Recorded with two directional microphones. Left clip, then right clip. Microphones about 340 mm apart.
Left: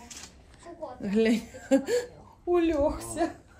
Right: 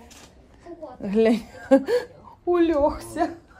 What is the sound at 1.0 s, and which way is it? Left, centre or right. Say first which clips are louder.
A woman's voice: right 6 dB; centre.